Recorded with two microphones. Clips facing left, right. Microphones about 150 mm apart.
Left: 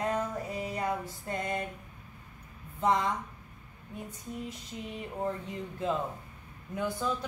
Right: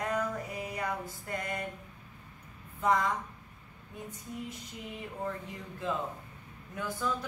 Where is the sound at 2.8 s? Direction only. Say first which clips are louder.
Left 1 dB; 25° left (ahead or behind).